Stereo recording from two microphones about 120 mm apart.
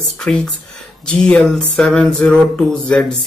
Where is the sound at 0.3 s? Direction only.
15° left (ahead or behind).